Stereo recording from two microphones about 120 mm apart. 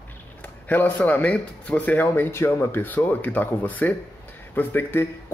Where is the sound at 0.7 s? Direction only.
15° left (ahead or behind).